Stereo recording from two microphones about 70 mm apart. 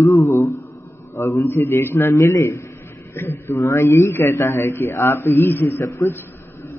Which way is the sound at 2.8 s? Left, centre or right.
Left.